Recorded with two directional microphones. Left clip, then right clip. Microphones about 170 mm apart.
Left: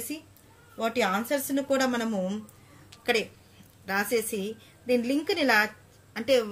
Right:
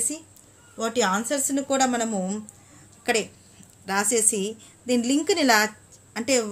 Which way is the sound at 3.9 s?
40° right (ahead or behind).